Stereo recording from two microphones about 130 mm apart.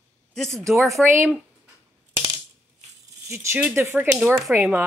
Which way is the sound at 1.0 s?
20° right (ahead or behind).